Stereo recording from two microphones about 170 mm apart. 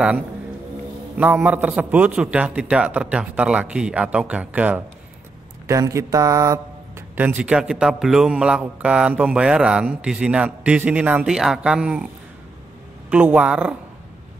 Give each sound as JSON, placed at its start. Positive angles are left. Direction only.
{"t": 1.1, "sound": "a man's voice", "side_deg": -10}
{"t": 13.1, "sound": "a man's voice", "side_deg": -10}